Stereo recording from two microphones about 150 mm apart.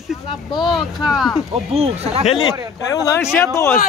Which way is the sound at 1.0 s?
Centre (ahead or behind).